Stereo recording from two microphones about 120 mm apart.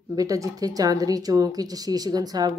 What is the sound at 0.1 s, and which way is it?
Speech, 30° right (ahead or behind).